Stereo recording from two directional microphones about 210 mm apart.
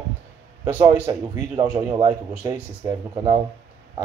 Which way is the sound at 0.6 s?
10° right (ahead or behind).